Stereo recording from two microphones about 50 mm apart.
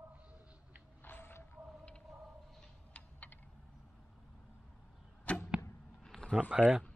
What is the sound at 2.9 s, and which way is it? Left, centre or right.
Typing, left.